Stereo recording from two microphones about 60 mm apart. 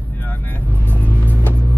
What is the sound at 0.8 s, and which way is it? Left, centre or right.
Car, right.